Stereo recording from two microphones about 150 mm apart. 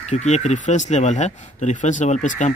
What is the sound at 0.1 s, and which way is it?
Speech, 50° left (ahead or behind).